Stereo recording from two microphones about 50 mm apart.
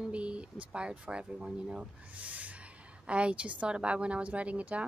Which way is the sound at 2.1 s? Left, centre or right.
Right.